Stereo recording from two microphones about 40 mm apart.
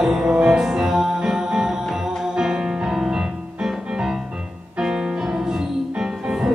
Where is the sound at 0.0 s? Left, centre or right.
Centre.